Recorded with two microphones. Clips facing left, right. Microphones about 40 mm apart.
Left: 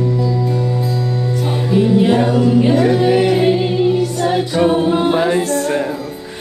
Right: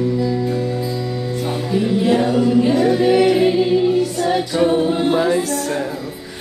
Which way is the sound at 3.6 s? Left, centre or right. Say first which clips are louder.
Even; left.